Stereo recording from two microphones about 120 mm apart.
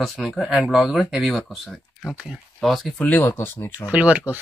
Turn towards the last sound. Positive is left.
turn(degrees=-10)  # may be behind; listen again after turning